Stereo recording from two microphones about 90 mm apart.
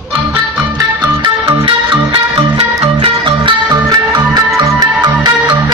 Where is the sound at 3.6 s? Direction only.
45° right (ahead or behind).